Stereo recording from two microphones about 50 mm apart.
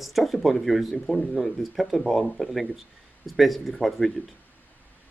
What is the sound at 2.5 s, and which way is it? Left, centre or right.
Speech, centre.